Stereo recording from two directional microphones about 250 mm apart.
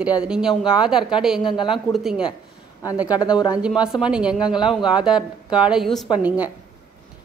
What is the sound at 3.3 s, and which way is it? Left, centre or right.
Speech, centre.